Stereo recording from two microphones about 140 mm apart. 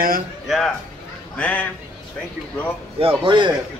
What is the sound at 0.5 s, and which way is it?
Speech, centre (ahead or behind).